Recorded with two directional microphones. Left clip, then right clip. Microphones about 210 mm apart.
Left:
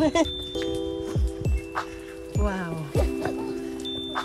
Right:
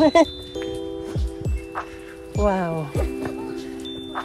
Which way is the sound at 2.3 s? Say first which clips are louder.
Right 9 dB; 10° left (ahead or behind).